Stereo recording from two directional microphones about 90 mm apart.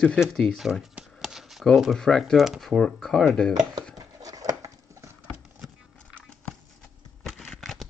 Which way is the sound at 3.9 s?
45° right (ahead or behind).